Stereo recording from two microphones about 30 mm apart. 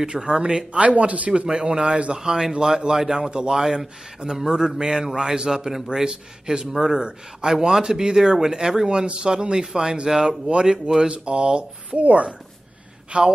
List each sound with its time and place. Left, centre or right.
0.0 s speech: right
0.7 s speech: right
1.5 s speech: right
2.1 s speech: centre
3.6 s speech: centre
10.4 s speech: right
12.0 s speech: right